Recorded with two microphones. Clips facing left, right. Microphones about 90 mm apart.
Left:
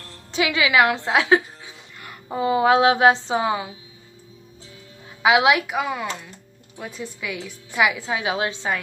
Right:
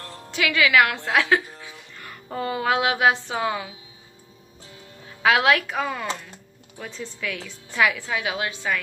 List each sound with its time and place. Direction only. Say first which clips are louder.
0.3 s a woman's voice: even; 20° left (ahead or behind)
5.2 s a woman's voice: left 2 dB; 15° left (ahead or behind)